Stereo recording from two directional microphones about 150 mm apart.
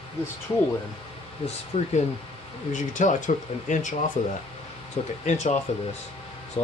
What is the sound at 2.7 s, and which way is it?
Speech, 55° left (ahead or behind).